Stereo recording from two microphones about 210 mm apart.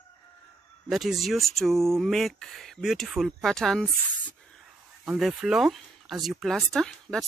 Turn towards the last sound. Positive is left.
turn(degrees=0)  # may be behind; listen again after turning